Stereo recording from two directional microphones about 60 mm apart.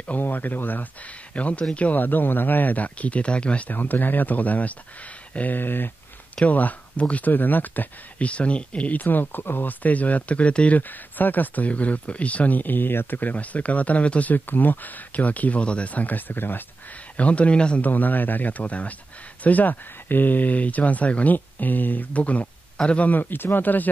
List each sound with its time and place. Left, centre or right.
0.0 s speech: left
3.7 s a man's voice: left
10.8 s speech: left
17.2 s speech: left
17.8 s a man's voice: left